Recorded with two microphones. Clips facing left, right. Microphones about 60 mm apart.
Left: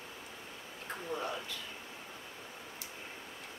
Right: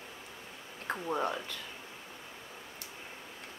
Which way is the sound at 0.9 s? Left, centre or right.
Right.